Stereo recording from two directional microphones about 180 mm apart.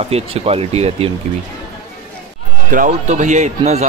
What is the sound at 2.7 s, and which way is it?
Speech, 45° right (ahead or behind).